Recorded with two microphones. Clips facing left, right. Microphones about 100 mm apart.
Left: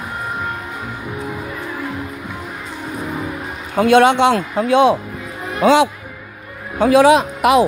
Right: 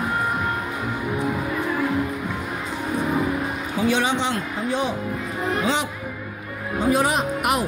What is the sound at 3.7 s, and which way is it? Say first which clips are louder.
A man's voice: left 11 dB; 60° left (ahead or behind).